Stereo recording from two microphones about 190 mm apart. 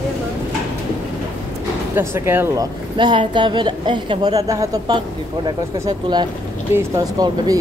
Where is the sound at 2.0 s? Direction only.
10° right (ahead or behind).